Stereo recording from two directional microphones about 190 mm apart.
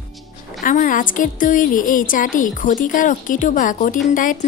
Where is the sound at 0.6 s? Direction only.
45° left (ahead or behind).